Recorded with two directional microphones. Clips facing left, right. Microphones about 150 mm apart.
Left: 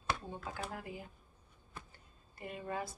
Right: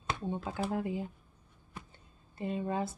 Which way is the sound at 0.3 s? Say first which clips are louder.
Right 8 dB; 25° right (ahead or behind).